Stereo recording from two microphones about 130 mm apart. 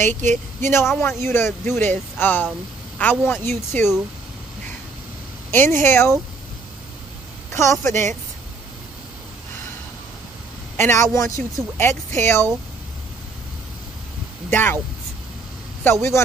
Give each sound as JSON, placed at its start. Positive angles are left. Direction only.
{"t": 0.0, "sound": "speech", "side_deg": -70}
{"t": 0.6, "sound": "speech", "side_deg": 20}
{"t": 5.5, "sound": "speech", "side_deg": 15}
{"t": 7.5, "sound": "speech", "side_deg": 20}
{"t": 7.9, "sound": "speech", "side_deg": -70}
{"t": 10.8, "sound": "speech", "side_deg": 20}
{"t": 14.5, "sound": "speech", "side_deg": 15}
{"t": 15.8, "sound": "speech", "side_deg": 20}